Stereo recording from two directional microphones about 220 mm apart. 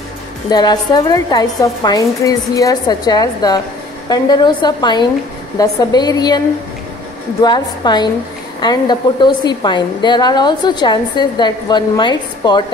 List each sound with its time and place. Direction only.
0.5 s a woman's voice: 20° left (ahead or behind)
7.4 s a woman's voice: 20° left (ahead or behind)